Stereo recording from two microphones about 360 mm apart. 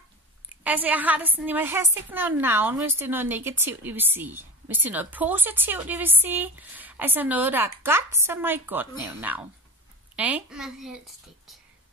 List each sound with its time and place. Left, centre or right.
0.7 s a woman's voice: centre